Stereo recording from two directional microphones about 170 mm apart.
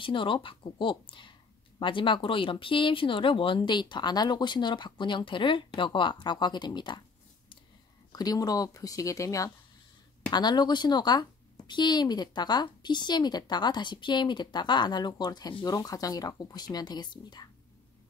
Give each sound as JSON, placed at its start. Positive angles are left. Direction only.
{"t": 0.0, "sound": "speech", "side_deg": 30}
{"t": 8.1, "sound": "speech", "side_deg": 20}